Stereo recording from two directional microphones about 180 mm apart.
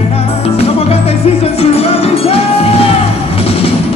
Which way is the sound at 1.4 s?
35° left (ahead or behind).